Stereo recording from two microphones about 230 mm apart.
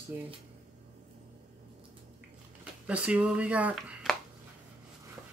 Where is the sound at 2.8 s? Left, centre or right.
Centre.